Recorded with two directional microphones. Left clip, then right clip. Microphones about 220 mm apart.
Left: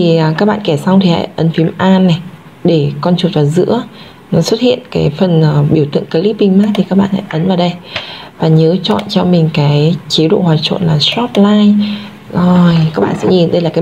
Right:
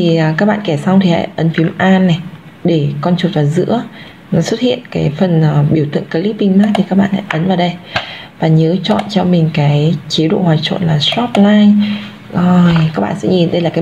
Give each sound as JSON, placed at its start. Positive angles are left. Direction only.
{"t": 0.0, "sound": "a woman's voice", "side_deg": 20}